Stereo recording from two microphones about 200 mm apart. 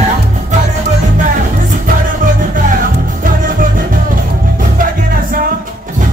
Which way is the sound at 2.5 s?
45° right (ahead or behind).